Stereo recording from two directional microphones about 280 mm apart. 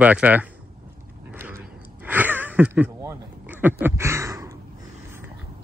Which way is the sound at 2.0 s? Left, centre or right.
Centre.